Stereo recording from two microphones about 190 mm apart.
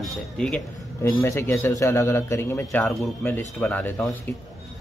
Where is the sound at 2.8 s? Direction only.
Centre (ahead or behind).